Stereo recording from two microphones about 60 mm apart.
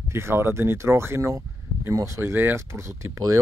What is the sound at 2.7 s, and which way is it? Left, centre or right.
Speech, right.